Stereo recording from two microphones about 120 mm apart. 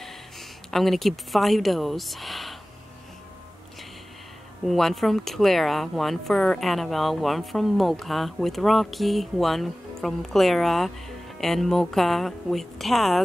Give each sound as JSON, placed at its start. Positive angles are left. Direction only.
{"t": 0.7, "sound": "speech", "side_deg": 0}
{"t": 4.6, "sound": "speech", "side_deg": 0}